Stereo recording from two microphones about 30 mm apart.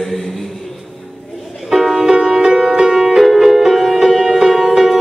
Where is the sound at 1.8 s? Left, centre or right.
Centre.